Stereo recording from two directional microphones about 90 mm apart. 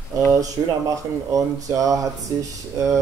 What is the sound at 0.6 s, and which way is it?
Speech, 40° right (ahead or behind).